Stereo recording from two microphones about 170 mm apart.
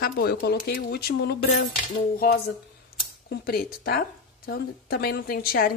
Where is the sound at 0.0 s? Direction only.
60° left (ahead or behind).